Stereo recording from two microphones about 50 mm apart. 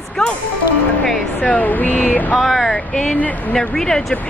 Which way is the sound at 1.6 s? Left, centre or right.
Left.